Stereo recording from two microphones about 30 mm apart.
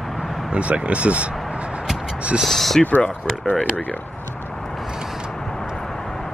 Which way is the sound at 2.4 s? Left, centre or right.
Centre.